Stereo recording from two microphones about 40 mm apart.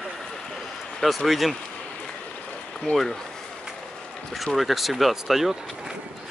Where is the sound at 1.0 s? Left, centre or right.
Centre.